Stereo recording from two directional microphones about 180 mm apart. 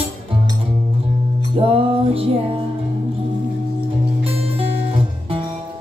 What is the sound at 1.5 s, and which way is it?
Music, 30° right (ahead or behind).